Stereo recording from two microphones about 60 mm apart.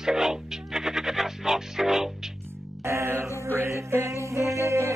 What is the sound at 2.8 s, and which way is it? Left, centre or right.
Music, right.